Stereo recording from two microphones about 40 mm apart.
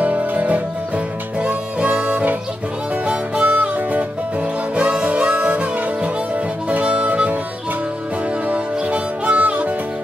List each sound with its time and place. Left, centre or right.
0.0 s music: right
1.4 s music: right
5.0 s harmonica: right
6.3 s music: right
6.9 s music: right
8.5 s music: right